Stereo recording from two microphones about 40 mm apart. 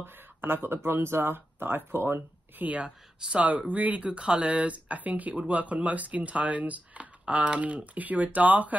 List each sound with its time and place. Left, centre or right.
0.0 s speech: right
0.8 s speech: right
1.9 s speech: right
2.6 s speech: right